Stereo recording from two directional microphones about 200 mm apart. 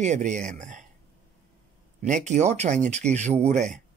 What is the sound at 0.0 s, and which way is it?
Speech, 35° right (ahead or behind).